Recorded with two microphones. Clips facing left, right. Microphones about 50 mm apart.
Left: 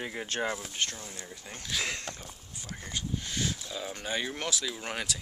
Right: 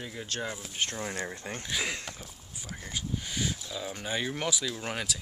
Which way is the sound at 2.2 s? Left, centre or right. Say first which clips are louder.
Even; centre.